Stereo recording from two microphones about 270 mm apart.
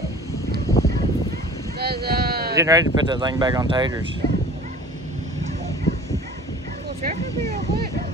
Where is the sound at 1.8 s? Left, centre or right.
Right.